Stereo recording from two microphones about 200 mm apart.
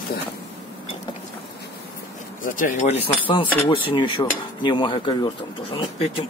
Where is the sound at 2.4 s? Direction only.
40° left (ahead or behind).